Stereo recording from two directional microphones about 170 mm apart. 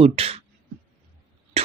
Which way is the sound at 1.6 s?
35° right (ahead or behind).